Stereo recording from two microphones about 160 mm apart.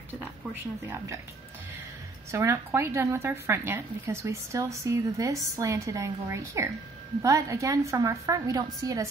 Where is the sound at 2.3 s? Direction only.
15° right (ahead or behind).